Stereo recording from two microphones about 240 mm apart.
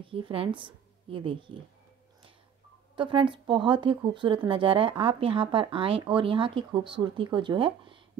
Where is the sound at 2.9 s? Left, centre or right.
Right.